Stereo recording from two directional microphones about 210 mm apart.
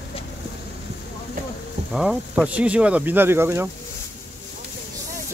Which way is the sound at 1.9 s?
Centre (ahead or behind).